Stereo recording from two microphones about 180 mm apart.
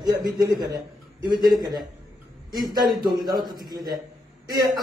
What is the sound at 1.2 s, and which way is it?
A man's voice, 20° right (ahead or behind).